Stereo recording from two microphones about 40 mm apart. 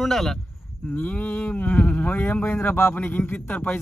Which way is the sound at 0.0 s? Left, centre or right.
Centre.